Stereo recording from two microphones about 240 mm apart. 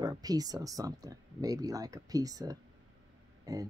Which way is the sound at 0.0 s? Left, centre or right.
Centre.